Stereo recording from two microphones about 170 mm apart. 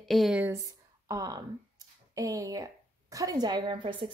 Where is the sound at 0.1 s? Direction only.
5° right (ahead or behind).